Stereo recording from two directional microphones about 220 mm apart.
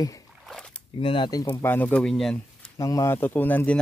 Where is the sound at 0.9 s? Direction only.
20° left (ahead or behind); by 2.7 s centre (ahead or behind).